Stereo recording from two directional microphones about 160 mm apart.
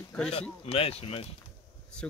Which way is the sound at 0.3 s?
40° left (ahead or behind).